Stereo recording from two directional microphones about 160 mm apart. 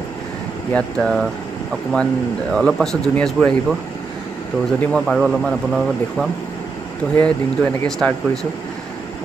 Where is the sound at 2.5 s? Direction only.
5° left (ahead or behind).